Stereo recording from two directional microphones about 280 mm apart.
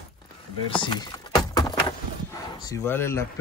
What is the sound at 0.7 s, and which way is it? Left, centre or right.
Speech, centre.